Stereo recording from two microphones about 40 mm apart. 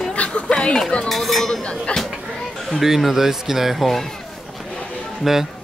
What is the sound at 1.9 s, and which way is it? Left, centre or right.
Speech, left.